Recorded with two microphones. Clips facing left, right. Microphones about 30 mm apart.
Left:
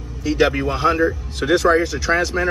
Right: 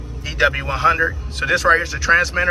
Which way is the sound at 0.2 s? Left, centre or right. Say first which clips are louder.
Left 1 dB; right.